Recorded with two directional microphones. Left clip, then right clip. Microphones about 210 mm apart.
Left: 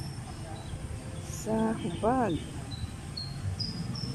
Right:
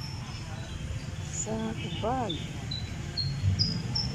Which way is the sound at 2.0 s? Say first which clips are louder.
Left 3 dB; 5° left (ahead or behind).